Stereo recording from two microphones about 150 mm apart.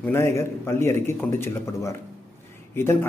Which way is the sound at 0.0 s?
15° left (ahead or behind).